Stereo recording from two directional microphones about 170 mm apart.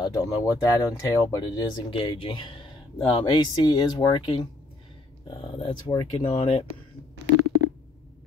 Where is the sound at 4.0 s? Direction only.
30° left (ahead or behind).